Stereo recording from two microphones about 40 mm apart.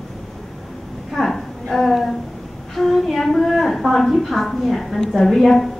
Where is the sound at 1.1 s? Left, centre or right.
Centre.